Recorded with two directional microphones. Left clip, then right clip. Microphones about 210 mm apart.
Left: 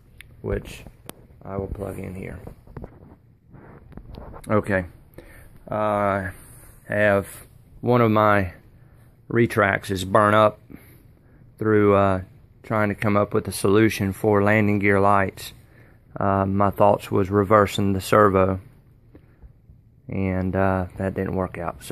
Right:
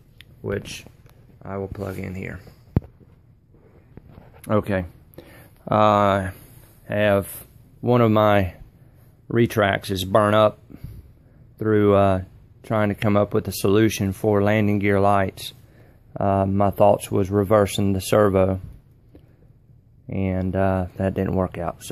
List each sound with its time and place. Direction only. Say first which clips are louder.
0.2 s speech: right 1 dB; 10° left (ahead or behind)
4.5 s speech: left 1 dB; centre (ahead or behind)
5.7 s speech: right 5 dB; 25° right (ahead or behind)
6.9 s speech: even; centre (ahead or behind)
20.1 s speech: even; centre (ahead or behind)